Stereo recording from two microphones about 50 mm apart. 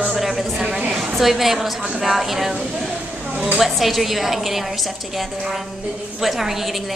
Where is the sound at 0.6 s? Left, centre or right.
Centre.